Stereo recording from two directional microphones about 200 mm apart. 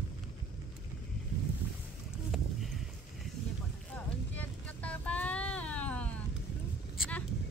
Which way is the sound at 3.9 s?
5° left (ahead or behind).